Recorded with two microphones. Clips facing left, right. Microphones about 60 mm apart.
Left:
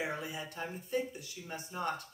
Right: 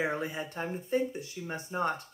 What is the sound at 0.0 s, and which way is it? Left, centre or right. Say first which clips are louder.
Speech: right 6 dB; right.